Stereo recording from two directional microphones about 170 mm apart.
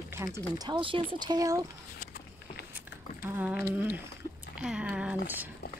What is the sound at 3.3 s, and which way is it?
Speech, 10° right (ahead or behind).